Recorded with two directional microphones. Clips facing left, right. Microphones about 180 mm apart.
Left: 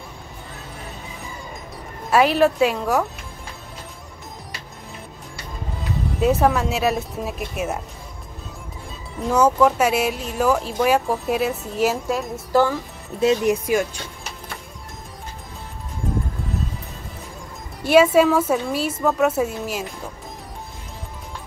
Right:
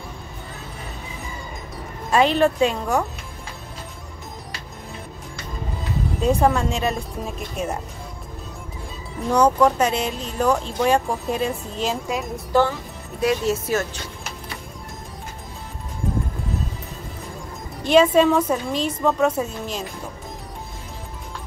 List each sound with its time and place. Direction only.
2.0 s speech: 5° left (ahead or behind)
6.2 s speech: 5° left (ahead or behind)
9.3 s speech: 5° left (ahead or behind)
13.2 s speech: 20° left (ahead or behind)
17.8 s speech: 10° left (ahead or behind)